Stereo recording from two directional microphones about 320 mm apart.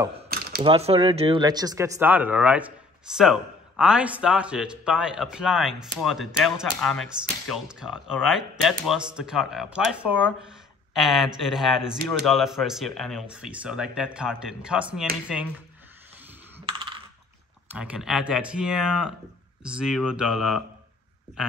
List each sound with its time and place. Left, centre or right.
0.0 s a sound: centre
0.6 s speech: centre
16.5 s coin: centre
17.7 s speech: centre